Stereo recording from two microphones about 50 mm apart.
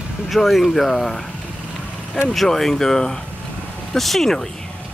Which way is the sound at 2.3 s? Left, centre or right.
Centre.